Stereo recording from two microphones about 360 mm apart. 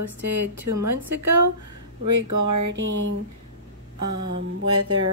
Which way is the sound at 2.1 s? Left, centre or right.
Right.